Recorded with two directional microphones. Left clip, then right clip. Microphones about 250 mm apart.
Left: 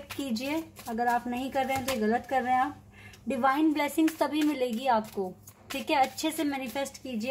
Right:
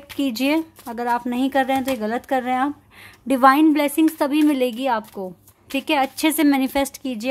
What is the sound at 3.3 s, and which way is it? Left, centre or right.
Speech, right.